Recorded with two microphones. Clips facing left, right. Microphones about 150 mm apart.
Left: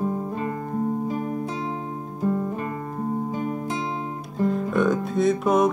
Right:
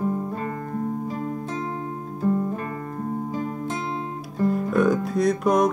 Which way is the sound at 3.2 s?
20° left (ahead or behind).